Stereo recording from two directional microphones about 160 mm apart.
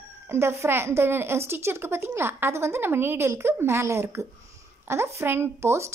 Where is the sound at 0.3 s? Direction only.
15° right (ahead or behind).